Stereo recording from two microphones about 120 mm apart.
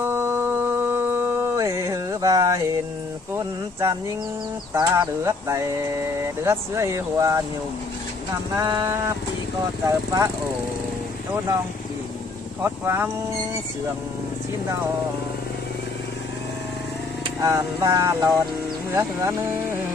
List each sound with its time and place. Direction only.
0.0 s mantra: 20° right (ahead or behind)
3.3 s speech: 25° right (ahead or behind)
8.5 s a sound: 30° right (ahead or behind)
9.8 s speech: 25° right (ahead or behind)
12.6 s speech: 20° right (ahead or behind)
17.4 s speech: 30° right (ahead or behind)